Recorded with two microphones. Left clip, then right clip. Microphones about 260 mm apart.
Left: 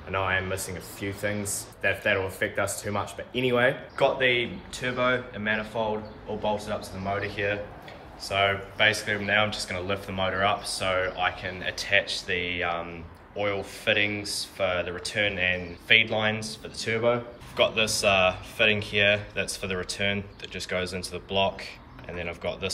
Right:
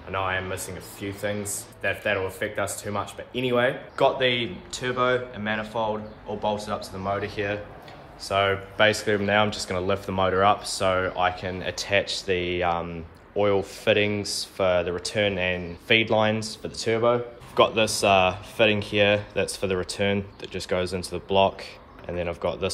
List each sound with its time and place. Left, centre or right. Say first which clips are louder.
0.1 s speech: even; centre